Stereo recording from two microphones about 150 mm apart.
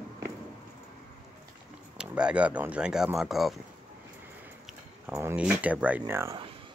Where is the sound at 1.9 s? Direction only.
5° right (ahead or behind).